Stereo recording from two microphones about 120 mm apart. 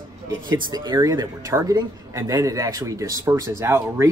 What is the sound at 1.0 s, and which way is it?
Speech, 25° right (ahead or behind).